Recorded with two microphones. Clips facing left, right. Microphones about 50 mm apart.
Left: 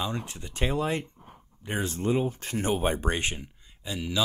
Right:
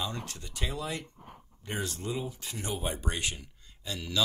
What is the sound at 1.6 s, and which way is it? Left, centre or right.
Speech, left.